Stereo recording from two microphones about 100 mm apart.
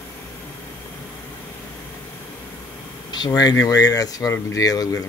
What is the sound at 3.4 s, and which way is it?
Speech, 40° left (ahead or behind).